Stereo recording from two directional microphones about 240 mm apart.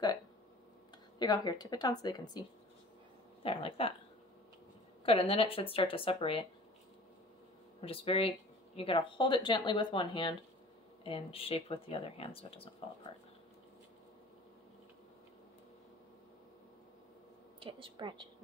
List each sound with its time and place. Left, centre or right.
1.2 s a woman's voice: centre
3.4 s speech: left
5.0 s speech: left
7.8 s speech: left
17.6 s a woman's voice: right